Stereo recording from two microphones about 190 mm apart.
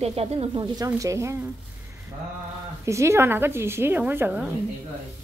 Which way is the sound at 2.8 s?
15° right (ahead or behind).